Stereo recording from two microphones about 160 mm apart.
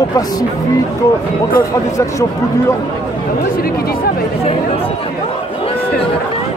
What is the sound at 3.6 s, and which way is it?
Speech, 70° left (ahead or behind).